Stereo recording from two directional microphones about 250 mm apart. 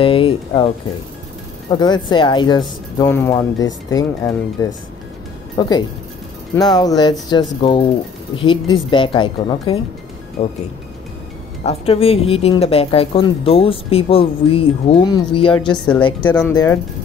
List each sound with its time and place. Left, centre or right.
0.0 s speech: left
1.7 s speech: centre
11.6 s speech: left
16.3 s speech: centre